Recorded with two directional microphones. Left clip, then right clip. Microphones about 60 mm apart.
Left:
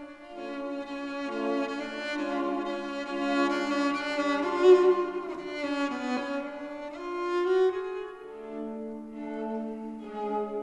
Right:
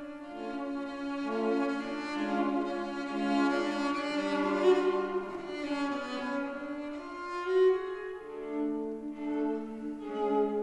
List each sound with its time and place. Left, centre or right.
1.2 s music: left
5.6 s cello: left
7.2 s music: left
10.1 s music: centre